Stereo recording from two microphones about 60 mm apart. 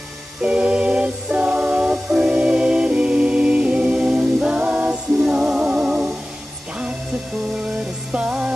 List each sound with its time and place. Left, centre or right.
0.4 s a capella: centre
7.6 s music: centre